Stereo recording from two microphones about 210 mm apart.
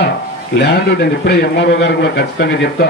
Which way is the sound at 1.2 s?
50° left (ahead or behind).